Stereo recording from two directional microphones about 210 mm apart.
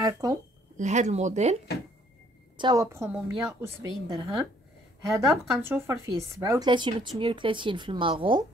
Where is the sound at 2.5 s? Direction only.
20° right (ahead or behind).